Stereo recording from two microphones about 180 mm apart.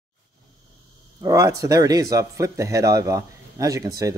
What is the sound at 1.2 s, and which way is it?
Speech, 15° right (ahead or behind).